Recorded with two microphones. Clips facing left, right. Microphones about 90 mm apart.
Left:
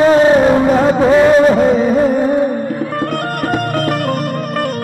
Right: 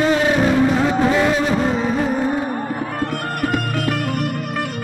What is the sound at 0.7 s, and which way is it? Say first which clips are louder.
Music: left 6 dB; 45° left (ahead or behind).